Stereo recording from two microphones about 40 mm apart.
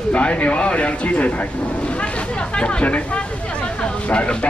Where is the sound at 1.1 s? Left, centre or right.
Left.